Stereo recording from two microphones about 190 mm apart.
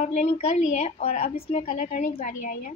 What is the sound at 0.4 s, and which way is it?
A woman's voice, 35° left (ahead or behind).